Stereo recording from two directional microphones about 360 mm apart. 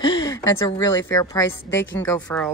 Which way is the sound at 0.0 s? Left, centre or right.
Centre.